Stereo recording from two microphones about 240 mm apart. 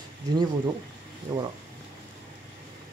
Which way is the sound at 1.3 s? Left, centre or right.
Centre.